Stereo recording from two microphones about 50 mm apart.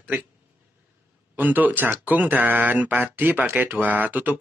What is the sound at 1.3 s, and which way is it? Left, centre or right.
Speech, right.